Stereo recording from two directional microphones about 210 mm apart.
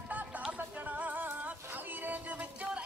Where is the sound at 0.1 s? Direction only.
5° right (ahead or behind).